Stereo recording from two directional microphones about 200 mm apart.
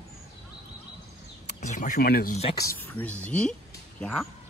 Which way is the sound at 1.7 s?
40° left (ahead or behind).